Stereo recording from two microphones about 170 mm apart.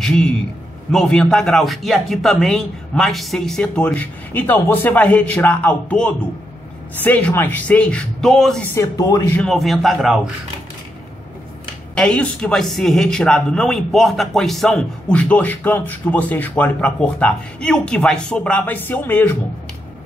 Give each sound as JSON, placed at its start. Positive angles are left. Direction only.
{"t": 0.0, "sound": "speech", "side_deg": 5}
{"t": 9.4, "sound": "speech", "side_deg": 0}
{"t": 11.9, "sound": "speech", "side_deg": 5}